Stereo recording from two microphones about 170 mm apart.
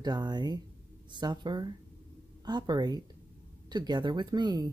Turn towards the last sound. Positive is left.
turn(degrees=-25)  # may be behind; listen again after turning